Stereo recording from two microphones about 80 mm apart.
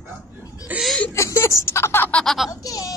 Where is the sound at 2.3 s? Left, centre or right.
Centre.